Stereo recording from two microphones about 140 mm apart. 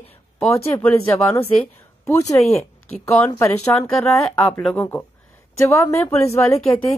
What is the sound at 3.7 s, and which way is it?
Speech, 10° left (ahead or behind).